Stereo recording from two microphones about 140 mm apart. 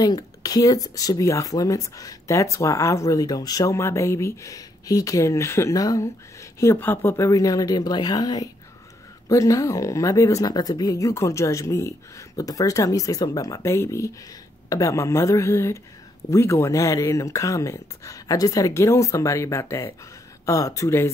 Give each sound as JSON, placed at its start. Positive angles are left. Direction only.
{"t": 0.0, "sound": "speech", "side_deg": 30}